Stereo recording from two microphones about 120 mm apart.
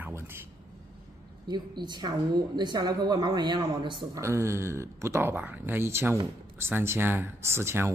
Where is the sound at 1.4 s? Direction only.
40° right (ahead or behind).